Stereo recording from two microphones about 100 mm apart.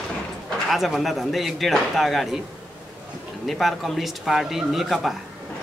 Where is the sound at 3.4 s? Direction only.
Centre (ahead or behind).